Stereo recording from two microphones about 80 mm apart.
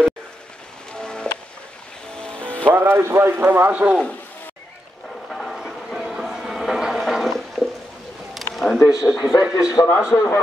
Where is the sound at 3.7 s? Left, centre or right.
Centre.